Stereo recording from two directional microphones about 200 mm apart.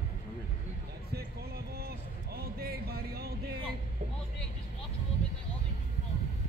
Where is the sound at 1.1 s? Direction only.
50° right (ahead or behind).